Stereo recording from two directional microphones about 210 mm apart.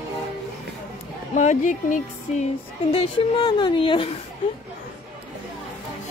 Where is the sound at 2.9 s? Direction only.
25° left (ahead or behind).